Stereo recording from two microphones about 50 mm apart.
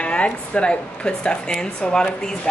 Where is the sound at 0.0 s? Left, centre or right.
Left.